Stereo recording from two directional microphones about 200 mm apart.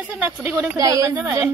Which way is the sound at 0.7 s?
15° right (ahead or behind).